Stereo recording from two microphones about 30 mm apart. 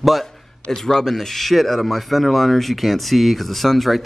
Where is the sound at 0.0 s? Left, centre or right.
Centre.